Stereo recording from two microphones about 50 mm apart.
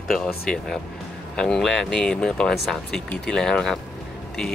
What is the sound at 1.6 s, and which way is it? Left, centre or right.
Speech, centre.